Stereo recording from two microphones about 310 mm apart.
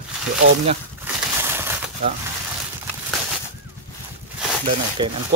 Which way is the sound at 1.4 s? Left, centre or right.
Centre.